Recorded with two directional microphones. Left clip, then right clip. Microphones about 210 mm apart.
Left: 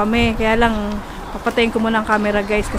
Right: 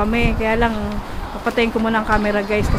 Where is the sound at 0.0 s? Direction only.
20° left (ahead or behind).